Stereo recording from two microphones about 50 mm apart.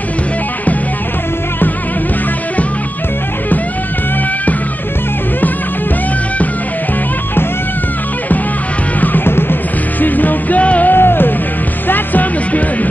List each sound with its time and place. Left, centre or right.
9.0 s music: left
10.9 s music: left